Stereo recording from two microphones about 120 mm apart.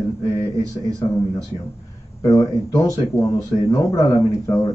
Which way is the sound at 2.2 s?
30° left (ahead or behind).